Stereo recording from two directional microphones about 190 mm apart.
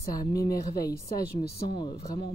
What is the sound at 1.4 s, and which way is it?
Speech, 55° left (ahead or behind).